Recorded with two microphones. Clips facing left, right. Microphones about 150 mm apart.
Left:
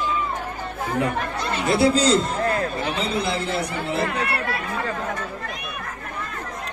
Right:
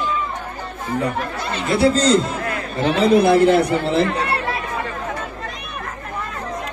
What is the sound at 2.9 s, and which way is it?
Speech, 75° right (ahead or behind).